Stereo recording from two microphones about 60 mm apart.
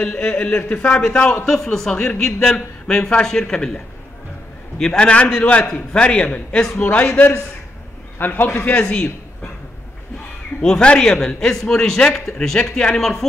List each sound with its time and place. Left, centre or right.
0.2 s a man's voice: centre
8.2 s a man's voice: left
8.6 s a man's voice: centre
10.6 s a man's voice: centre